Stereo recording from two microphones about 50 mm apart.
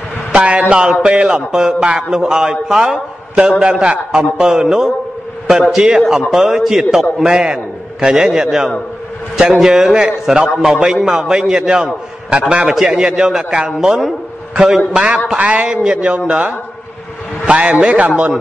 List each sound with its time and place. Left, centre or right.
0.3 s a man's voice: right; by 14.1 s centre
15.3 s a man's voice: right